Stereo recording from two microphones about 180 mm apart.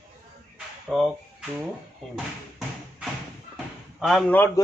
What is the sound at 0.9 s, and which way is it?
Speech, centre (ahead or behind).